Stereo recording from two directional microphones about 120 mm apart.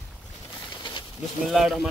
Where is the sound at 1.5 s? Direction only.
5° right (ahead or behind).